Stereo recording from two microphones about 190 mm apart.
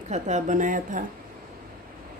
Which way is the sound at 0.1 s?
40° right (ahead or behind).